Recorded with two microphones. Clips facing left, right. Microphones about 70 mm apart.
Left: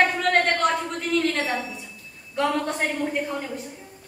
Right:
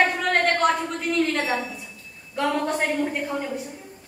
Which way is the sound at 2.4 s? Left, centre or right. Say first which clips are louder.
Even; centre.